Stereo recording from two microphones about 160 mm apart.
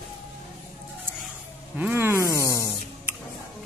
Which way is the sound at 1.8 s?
10° right (ahead or behind).